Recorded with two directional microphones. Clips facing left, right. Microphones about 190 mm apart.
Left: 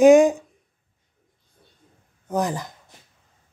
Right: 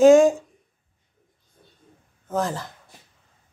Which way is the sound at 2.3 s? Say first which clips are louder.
Left 1 dB; 15° left (ahead or behind).